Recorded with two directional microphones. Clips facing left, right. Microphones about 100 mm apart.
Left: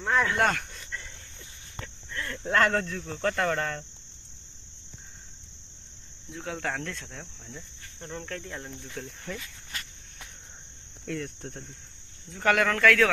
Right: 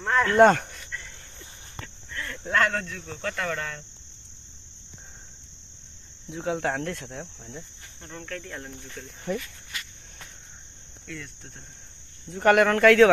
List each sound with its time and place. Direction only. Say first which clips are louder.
0.0 s cricket: right 2 dB; 5° left (ahead or behind)
0.4 s speech: right 10 dB; 35° right (ahead or behind)
2.5 s speech: left 1 dB; 25° left (ahead or behind)
6.3 s cricket: right 6 dB; 20° right (ahead or behind)
8.0 s speech: even; 10° left (ahead or behind)
9.3 s cricket: right 10 dB; 15° right (ahead or behind)
11.1 s cricket: left 6 dB; 50° left (ahead or behind)
12.3 s cricket: right 5 dB; 15° right (ahead or behind)